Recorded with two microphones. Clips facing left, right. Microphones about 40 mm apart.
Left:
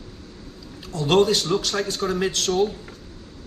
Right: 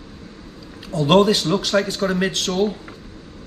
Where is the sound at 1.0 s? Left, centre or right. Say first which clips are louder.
Right 3 dB; centre.